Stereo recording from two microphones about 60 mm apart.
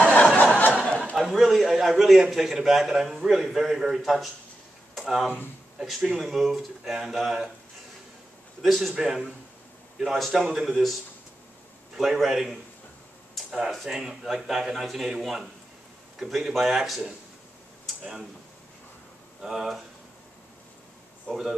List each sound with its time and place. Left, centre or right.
0.0 s chuckle: left
1.1 s a man's voice: centre
8.6 s a man's voice: centre
19.4 s a man's voice: centre
21.3 s a man's voice: centre